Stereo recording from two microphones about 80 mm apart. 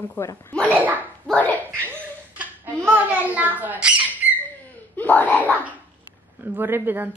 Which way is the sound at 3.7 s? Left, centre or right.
Centre.